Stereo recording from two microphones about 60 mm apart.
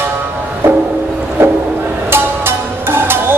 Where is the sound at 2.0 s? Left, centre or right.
Right.